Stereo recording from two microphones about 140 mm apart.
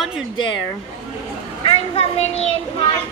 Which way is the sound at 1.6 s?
40° left (ahead or behind).